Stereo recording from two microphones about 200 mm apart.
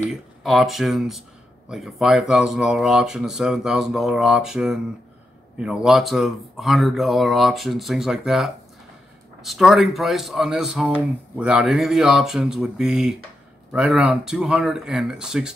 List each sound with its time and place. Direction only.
0.0 s speech: centre (ahead or behind)